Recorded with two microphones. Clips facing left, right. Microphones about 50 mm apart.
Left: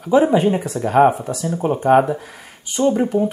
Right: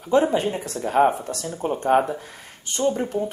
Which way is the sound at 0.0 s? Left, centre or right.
Centre.